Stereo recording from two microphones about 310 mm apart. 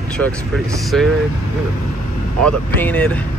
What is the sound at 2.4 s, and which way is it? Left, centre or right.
Speech, centre.